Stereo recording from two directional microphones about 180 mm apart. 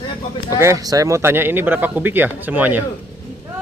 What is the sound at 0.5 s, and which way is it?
Speech, 15° right (ahead or behind).